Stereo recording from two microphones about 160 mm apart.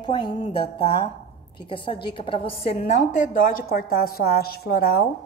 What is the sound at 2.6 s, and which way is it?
A woman's voice, 45° left (ahead or behind).